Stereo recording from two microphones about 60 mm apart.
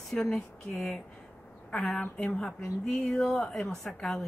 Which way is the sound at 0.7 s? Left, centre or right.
Centre.